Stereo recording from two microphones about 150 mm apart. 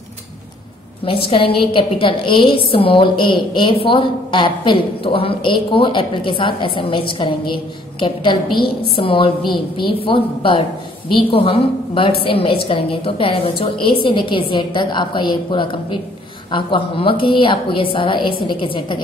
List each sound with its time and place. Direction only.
1.0 s a woman's voice: 40° left (ahead or behind)
8.5 s a woman's voice: 90° left
8.9 s a woman's voice: 35° left (ahead or behind)